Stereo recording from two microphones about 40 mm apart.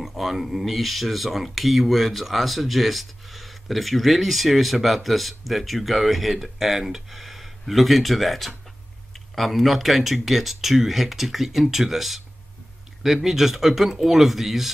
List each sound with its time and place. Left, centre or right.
0.0 s speech: centre